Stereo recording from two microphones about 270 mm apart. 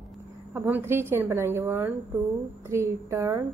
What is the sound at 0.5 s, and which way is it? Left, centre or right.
A woman's voice, centre.